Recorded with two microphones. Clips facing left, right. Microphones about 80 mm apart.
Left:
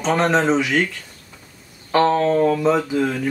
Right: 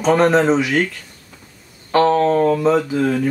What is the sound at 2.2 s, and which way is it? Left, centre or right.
Speech, right.